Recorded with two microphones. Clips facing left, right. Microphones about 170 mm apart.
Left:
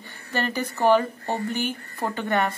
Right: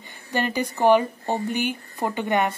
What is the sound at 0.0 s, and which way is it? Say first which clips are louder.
Speech: right 2 dB; 15° right (ahead or behind).